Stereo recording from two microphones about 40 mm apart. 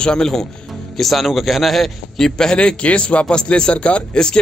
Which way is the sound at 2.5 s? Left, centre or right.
Left.